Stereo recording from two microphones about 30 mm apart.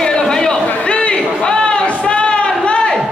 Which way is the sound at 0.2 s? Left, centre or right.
Left.